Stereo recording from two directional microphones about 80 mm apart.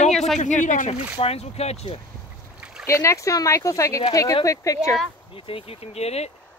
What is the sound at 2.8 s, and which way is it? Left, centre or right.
Speech, left.